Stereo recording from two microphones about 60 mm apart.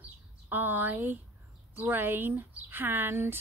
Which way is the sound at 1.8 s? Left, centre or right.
Right.